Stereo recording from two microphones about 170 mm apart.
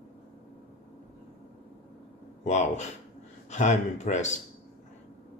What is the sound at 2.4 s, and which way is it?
Speech, 45° left (ahead or behind).